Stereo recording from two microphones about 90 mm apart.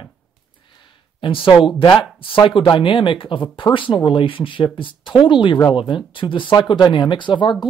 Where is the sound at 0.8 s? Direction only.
70° left (ahead or behind).